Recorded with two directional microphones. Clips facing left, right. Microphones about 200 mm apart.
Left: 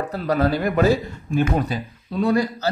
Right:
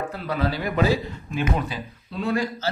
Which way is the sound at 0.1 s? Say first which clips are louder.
Left 6 dB; 45° left (ahead or behind).